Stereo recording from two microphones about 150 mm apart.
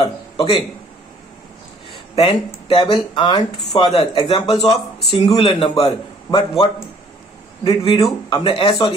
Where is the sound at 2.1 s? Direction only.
40° left (ahead or behind).